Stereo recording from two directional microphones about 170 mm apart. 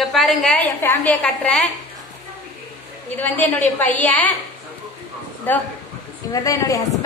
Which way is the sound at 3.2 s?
10° left (ahead or behind).